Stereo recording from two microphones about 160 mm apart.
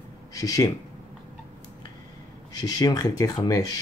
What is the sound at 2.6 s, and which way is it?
Speech, 25° left (ahead or behind).